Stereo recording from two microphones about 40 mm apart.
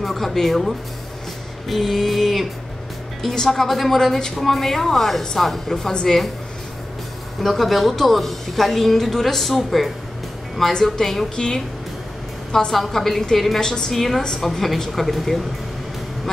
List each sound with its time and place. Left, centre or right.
0.0 s a woman's voice: centre
7.4 s a woman's voice: centre
12.7 s a woman's voice: centre
13.9 s a woman's voice: centre